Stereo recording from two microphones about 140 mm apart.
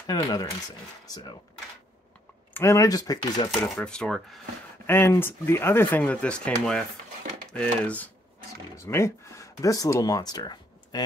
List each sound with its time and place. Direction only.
0.0 s speech: 30° left (ahead or behind)
2.5 s speech: 20° left (ahead or behind)
3.7 s speech: 5° left (ahead or behind)
4.8 s speech: 15° left (ahead or behind)